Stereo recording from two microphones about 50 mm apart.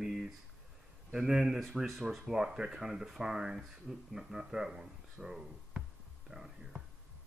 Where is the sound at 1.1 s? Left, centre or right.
Centre.